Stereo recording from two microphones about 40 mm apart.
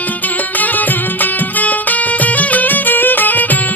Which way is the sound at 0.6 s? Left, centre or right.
Left.